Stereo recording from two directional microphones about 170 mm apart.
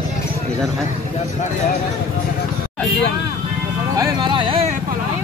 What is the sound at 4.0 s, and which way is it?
Speech, 25° right (ahead or behind).